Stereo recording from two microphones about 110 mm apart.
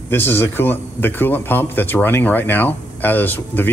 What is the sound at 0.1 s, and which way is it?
A man's voice, 20° left (ahead or behind).